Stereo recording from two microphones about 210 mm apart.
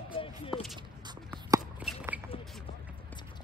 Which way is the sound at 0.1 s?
25° left (ahead or behind).